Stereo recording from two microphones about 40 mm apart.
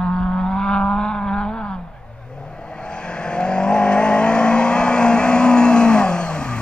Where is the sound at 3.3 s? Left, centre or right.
Left.